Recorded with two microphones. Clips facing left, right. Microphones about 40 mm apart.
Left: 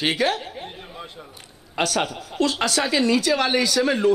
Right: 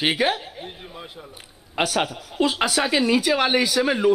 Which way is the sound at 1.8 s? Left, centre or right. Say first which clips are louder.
Even; centre.